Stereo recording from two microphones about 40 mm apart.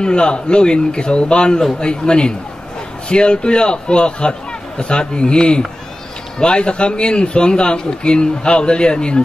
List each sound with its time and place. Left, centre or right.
0.0 s a man's voice: left